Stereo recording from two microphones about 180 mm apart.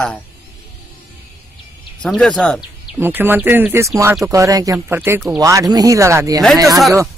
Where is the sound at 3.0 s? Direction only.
10° right (ahead or behind).